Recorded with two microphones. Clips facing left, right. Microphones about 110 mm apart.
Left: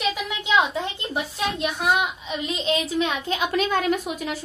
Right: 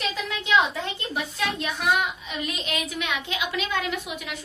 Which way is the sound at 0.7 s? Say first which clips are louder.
Left 3 dB; 20° left (ahead or behind).